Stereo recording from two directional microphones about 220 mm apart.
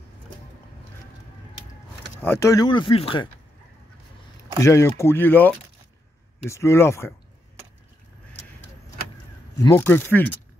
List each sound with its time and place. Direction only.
2.1 s speech: 10° left (ahead or behind)
4.6 s speech: 15° left (ahead or behind)
9.6 s speech: 10° left (ahead or behind)